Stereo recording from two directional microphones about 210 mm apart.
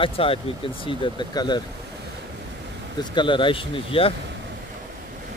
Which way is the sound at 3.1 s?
25° left (ahead or behind).